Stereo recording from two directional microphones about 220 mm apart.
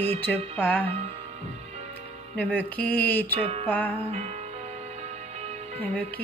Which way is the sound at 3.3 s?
30° right (ahead or behind).